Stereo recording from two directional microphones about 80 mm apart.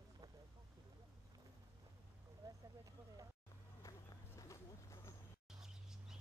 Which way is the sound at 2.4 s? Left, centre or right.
Right.